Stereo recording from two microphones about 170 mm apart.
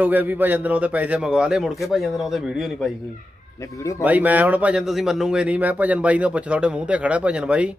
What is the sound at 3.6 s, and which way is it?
Speech, 20° left (ahead or behind).